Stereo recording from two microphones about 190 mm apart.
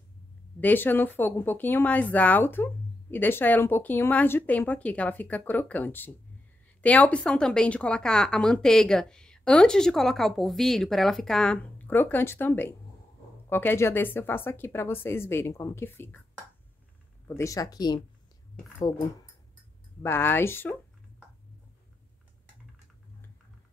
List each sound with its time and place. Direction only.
0.6 s speech: 10° left (ahead or behind)
17.4 s speech: 15° left (ahead or behind)
20.0 s speech: 10° left (ahead or behind)